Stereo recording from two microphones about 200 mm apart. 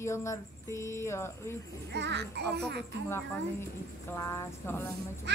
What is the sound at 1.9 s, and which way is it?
Speech, 60° right (ahead or behind).